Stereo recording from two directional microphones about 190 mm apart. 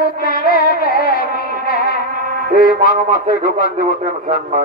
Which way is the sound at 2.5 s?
50° right (ahead or behind).